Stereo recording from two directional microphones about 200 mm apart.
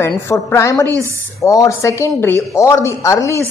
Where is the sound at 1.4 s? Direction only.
15° left (ahead or behind).